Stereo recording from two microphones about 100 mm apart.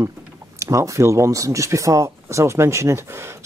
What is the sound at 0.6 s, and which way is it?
Speech, 30° right (ahead or behind).